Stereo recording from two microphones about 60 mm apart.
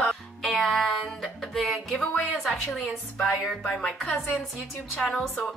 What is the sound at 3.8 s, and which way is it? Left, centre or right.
A woman's voice, centre.